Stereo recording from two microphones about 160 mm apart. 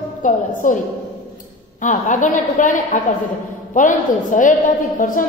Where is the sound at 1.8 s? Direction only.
50° left (ahead or behind).